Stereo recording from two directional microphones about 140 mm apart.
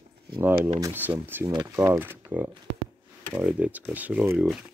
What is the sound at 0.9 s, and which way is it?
Speech, 15° right (ahead or behind).